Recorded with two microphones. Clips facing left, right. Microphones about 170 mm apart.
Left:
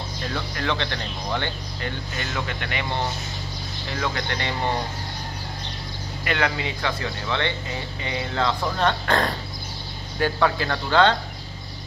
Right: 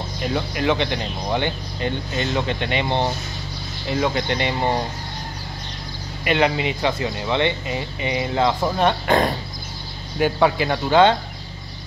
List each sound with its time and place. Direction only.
0.2 s speech: 15° right (ahead or behind)
6.2 s speech: 20° right (ahead or behind)